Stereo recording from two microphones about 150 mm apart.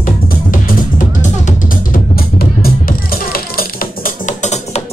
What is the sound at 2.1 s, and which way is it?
Music, 90° left.